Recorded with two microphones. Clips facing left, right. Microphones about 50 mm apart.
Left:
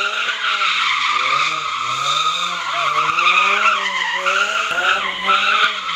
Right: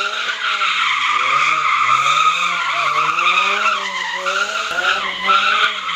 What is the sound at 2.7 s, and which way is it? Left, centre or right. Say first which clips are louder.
Vehicle: left 2 dB; right.